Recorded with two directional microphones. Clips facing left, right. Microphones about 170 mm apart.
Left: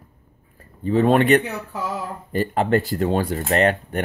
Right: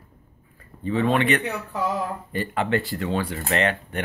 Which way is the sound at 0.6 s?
40° left (ahead or behind).